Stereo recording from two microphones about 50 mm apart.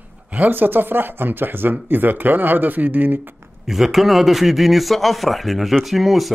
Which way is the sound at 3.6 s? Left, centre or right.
Centre.